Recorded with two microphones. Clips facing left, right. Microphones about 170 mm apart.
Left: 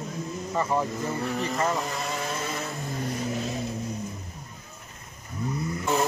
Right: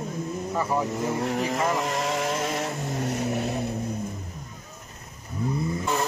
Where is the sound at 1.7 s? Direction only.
90° right; by 3.6 s 60° right (ahead or behind).